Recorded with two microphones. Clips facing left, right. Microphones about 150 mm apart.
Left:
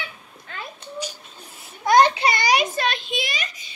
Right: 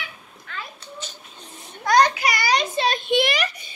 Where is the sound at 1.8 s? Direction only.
25° left (ahead or behind).